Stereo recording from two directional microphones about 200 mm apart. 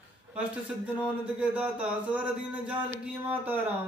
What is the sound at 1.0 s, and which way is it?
Speech, 5° right (ahead or behind).